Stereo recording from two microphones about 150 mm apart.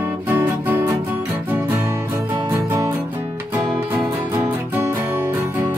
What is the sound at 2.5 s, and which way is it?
Music, 15° right (ahead or behind).